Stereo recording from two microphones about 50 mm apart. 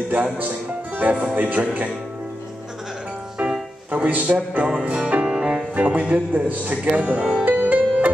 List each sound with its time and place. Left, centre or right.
0.1 s speech: right
3.9 s speech: right
4.8 s music: right
5.8 s speech: right
7.4 s music: right